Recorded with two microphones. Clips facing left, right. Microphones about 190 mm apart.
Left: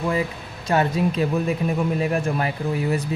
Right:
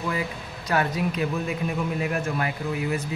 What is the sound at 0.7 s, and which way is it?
A man's voice, 25° left (ahead or behind).